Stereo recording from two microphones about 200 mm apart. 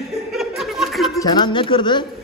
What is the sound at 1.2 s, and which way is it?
Speech, 20° left (ahead or behind).